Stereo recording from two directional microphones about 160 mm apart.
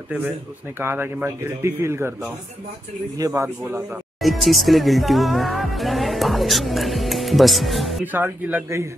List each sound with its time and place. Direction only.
0.7 s speech: 15° right (ahead or behind)
3.2 s speech: 20° right (ahead or behind)
4.2 s music: centre (ahead or behind)
8.0 s speech: 10° right (ahead or behind)